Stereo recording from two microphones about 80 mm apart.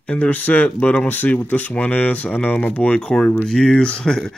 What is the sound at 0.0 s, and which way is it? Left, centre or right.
Speech, centre.